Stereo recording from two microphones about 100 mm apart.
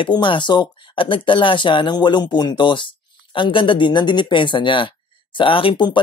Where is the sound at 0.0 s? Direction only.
55° left (ahead or behind).